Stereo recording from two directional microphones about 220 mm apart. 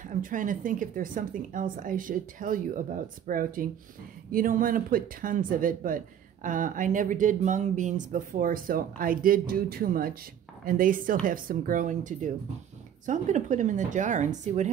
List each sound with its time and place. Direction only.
0.0 s speech: 35° right (ahead or behind)